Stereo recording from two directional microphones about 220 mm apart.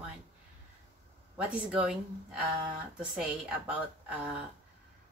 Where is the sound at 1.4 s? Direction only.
5° right (ahead or behind).